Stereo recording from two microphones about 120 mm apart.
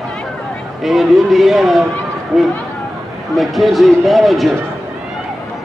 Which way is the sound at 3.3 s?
Centre (ahead or behind).